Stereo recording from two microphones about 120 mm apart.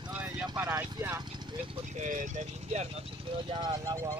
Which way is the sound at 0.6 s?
20° right (ahead or behind).